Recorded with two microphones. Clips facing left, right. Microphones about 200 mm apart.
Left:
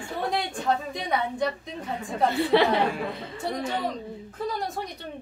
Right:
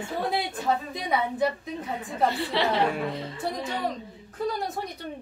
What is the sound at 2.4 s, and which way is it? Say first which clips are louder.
Speech: left 7 dB; 55° left (ahead or behind).